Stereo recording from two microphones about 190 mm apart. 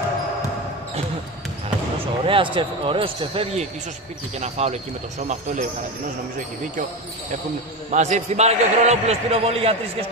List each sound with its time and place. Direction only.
2.0 s a man's voice: 30° right (ahead or behind)
7.9 s a man's voice: 40° right (ahead or behind)